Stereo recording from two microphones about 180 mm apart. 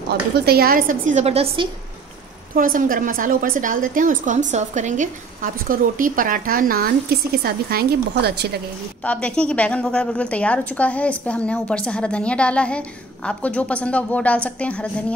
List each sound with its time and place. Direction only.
0.1 s a woman's voice: 60° right (ahead or behind); by 1.7 s 35° right (ahead or behind)
2.5 s a woman's voice: 50° right (ahead or behind)
9.0 s a woman's voice: 5° left (ahead or behind)